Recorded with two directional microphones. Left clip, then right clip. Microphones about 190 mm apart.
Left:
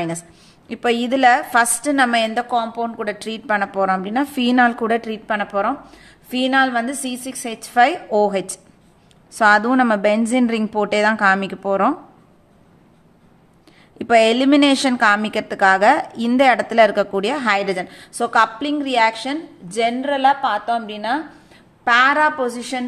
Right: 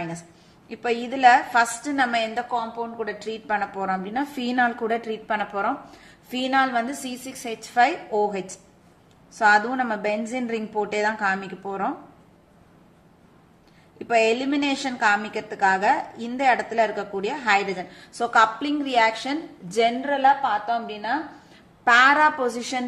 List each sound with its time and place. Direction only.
0.7 s a woman's voice: 35° left (ahead or behind)
13.9 s a woman's voice: 40° left (ahead or behind)
21.8 s a woman's voice: 10° left (ahead or behind)